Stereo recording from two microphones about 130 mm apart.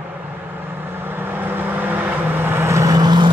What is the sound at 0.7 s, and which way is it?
Vehicle, 15° right (ahead or behind).